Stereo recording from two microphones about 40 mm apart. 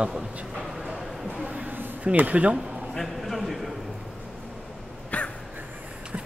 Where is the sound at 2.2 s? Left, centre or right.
Right.